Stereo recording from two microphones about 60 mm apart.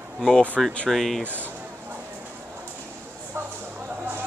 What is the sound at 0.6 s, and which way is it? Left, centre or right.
Speech, centre.